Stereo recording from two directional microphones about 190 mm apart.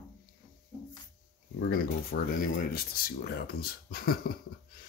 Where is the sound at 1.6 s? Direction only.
50° left (ahead or behind).